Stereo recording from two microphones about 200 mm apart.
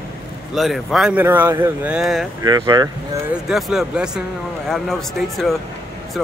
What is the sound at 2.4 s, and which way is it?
Speech, 20° right (ahead or behind).